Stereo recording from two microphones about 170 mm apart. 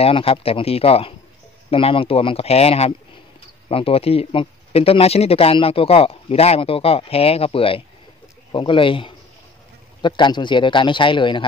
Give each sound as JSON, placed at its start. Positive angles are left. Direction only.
{"t": 0.0, "sound": "a man's voice", "side_deg": 35}